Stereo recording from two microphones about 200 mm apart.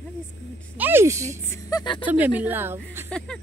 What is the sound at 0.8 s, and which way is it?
Speech, 10° right (ahead or behind).